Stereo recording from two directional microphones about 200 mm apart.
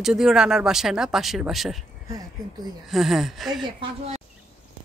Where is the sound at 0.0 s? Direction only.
Centre (ahead or behind).